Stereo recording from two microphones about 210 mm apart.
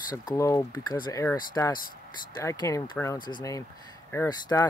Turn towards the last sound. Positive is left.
turn(degrees=15)  # may be behind; listen again after turning